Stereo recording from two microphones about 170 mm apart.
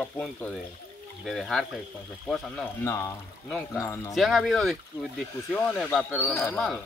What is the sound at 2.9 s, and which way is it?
Speech, 20° left (ahead or behind).